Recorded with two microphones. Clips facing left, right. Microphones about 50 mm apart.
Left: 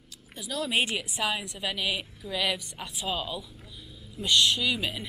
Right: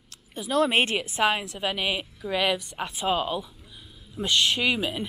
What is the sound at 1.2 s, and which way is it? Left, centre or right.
Speech, right.